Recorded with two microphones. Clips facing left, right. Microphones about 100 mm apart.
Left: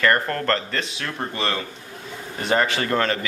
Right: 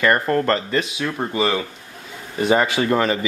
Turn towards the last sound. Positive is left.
turn(degrees=-10)  # may be behind; listen again after turning